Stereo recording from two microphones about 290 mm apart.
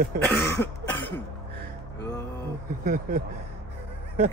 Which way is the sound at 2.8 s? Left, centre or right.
Right.